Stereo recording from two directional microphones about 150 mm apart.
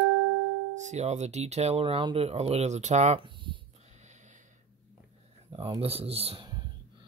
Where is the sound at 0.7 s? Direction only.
50° right (ahead or behind).